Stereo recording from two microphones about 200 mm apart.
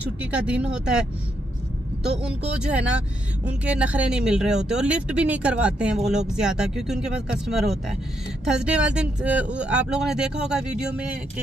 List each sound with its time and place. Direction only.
0.0 s speech: 5° right (ahead or behind)
2.0 s speech: 5° right (ahead or behind)